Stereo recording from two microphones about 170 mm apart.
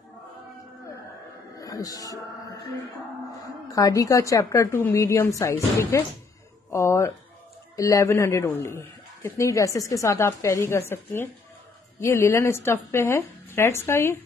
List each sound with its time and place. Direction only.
1.6 s speech: 20° left (ahead or behind)
3.6 s a woman's voice: 20° left (ahead or behind)